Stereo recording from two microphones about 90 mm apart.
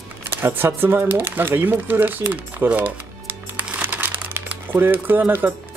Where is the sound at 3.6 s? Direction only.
20° right (ahead or behind).